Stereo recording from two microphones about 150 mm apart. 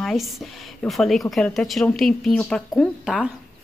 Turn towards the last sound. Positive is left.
turn(degrees=0)  # may be behind; listen again after turning